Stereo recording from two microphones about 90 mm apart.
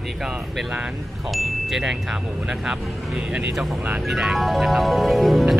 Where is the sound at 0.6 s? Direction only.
10° right (ahead or behind).